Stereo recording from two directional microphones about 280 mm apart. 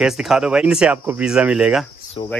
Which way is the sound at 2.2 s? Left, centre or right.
Centre.